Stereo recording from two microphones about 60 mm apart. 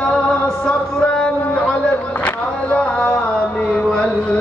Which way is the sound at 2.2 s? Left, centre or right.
Left.